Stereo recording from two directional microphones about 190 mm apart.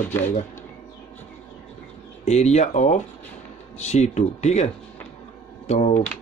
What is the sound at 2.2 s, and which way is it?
A man's voice, 35° left (ahead or behind).